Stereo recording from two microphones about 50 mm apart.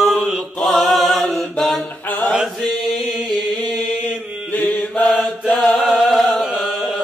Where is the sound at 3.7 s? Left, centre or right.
Left.